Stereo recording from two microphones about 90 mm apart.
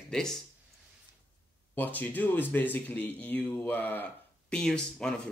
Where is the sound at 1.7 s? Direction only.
20° left (ahead or behind).